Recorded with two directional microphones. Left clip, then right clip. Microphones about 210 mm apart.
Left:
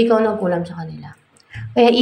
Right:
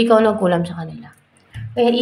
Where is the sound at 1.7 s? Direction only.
15° left (ahead or behind).